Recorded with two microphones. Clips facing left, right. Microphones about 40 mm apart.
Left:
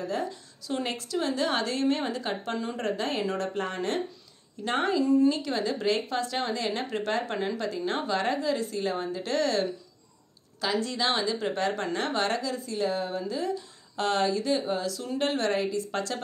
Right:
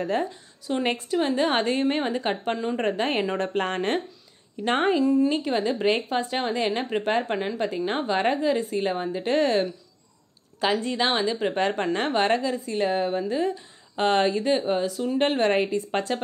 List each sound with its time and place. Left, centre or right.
0.0 s a woman's voice: right
0.3 s speech: centre
1.1 s a woman's voice: right
3.5 s a woman's voice: right